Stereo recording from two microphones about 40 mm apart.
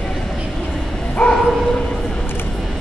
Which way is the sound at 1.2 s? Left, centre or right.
Left.